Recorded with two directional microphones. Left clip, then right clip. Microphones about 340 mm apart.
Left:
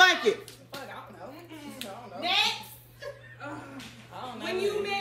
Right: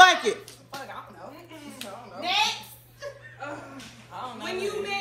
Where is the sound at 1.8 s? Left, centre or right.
Centre.